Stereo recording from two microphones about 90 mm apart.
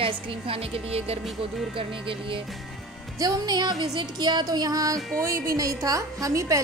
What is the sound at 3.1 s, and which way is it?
Music, 40° right (ahead or behind).